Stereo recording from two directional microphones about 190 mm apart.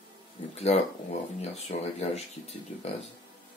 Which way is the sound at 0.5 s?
35° left (ahead or behind).